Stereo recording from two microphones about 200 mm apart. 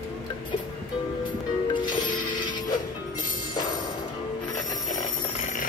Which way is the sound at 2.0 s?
25° left (ahead or behind).